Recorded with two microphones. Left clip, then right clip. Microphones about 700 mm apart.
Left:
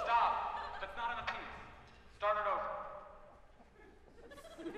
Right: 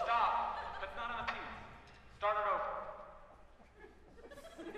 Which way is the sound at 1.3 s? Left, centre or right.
Left.